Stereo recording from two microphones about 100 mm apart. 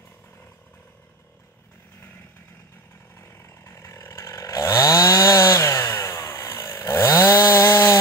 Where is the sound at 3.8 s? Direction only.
30° left (ahead or behind).